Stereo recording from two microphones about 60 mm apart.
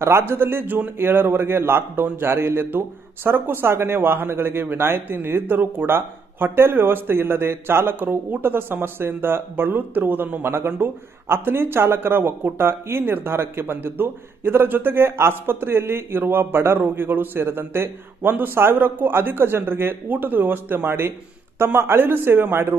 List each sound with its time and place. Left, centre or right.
0.3 s speech: right